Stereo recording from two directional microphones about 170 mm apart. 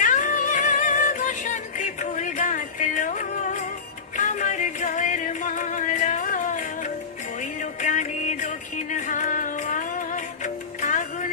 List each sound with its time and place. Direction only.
0.0 s music: 50° left (ahead or behind)